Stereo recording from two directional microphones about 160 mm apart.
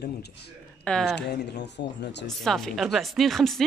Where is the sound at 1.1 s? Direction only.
90° left.